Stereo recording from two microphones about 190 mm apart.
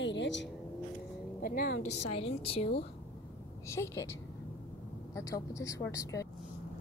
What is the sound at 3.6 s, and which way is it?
Speech, 15° left (ahead or behind).